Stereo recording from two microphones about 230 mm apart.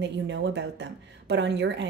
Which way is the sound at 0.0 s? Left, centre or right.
Right.